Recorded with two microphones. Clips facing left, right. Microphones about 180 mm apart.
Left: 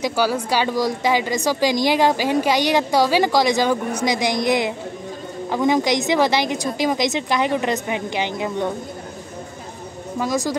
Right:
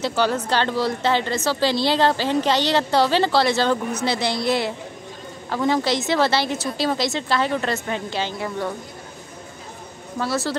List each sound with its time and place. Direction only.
0.0 s speech: 10° left (ahead or behind)
10.1 s speech: 15° left (ahead or behind)